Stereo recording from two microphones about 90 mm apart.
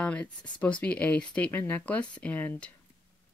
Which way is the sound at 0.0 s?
15° left (ahead or behind).